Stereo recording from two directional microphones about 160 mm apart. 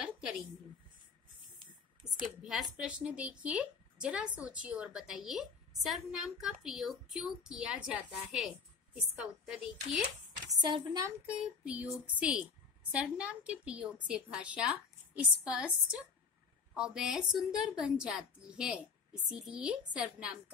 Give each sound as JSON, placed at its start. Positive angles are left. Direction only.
{"t": 2.4, "sound": "a woman's voice", "side_deg": 0}
{"t": 10.6, "sound": "a woman's voice", "side_deg": -25}
{"t": 11.2, "sound": "a woman's voice", "side_deg": -5}